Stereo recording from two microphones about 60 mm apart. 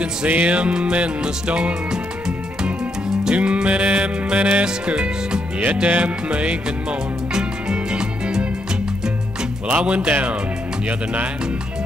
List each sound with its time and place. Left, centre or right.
0.0 s music: right
9.7 s speech: right